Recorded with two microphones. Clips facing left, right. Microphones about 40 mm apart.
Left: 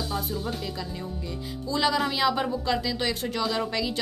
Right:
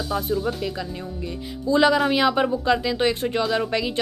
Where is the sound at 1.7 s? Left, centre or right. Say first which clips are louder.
Right 7 dB; right.